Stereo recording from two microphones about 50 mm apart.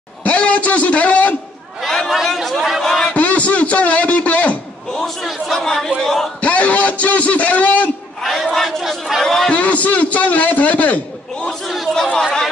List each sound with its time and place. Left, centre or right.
0.2 s a sound: left
1.8 s chatter: centre
2.1 s speech: centre
3.1 s a sound: left
4.9 s chatter: centre
5.9 s a man's voice: centre
6.4 s a man's voice: left
8.2 s speech: centre
9.5 s a man's voice: left
11.6 s chatter: centre
11.9 s speech: centre